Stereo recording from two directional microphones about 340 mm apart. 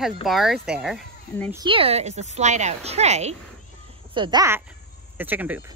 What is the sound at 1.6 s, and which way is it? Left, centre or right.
A woman's voice, centre.